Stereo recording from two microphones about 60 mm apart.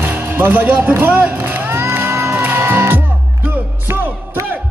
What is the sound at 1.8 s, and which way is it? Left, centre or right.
Music, right.